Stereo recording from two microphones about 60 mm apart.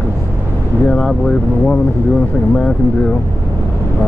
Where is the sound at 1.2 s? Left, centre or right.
Left.